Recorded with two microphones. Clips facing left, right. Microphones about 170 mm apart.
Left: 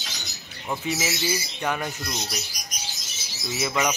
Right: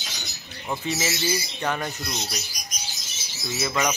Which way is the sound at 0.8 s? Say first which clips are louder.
Even; 10° left (ahead or behind).